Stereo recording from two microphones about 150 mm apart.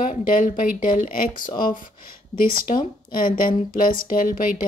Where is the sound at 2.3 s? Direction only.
70° left (ahead or behind).